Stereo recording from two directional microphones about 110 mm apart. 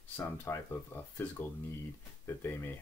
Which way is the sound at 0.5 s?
20° left (ahead or behind).